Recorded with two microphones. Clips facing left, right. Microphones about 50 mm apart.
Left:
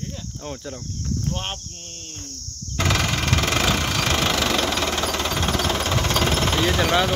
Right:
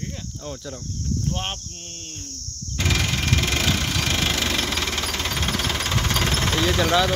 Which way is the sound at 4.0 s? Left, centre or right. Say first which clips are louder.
Left 2 dB; left.